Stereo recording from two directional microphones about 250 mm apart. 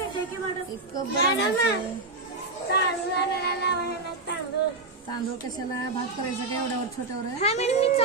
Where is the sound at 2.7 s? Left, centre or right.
Left.